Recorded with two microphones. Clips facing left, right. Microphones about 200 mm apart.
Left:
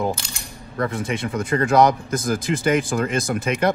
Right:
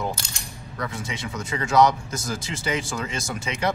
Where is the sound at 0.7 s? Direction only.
55° left (ahead or behind).